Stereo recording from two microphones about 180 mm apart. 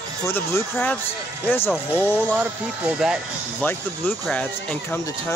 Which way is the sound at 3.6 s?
10° left (ahead or behind).